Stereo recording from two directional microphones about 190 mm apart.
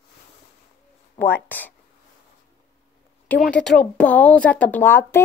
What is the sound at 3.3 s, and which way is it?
Speech, 5° left (ahead or behind).